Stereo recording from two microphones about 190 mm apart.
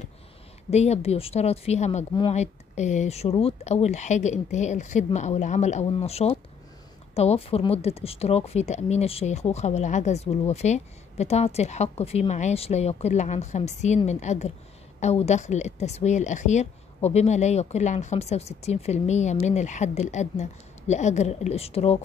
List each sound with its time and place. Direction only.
0.7 s speech: 35° left (ahead or behind)